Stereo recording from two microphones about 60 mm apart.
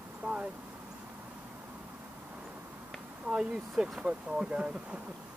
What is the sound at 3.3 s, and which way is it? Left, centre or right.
Speech, centre.